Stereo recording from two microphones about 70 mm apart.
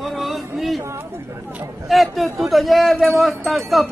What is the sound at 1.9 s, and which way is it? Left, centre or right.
Speech, centre.